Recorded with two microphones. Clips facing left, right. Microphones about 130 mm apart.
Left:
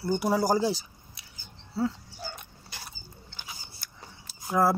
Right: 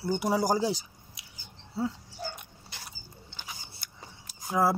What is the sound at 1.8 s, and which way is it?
Dog, 15° right (ahead or behind).